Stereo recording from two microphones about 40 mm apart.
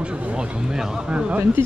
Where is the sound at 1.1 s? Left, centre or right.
Right.